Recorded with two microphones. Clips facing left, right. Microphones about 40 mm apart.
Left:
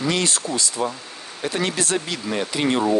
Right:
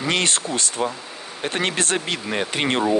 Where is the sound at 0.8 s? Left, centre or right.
Right.